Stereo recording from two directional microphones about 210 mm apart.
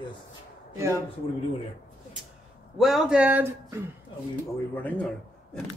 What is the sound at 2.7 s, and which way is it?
Speech, centre (ahead or behind).